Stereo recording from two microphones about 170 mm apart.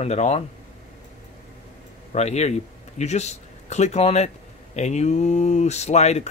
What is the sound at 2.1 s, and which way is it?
Speech, 40° left (ahead or behind).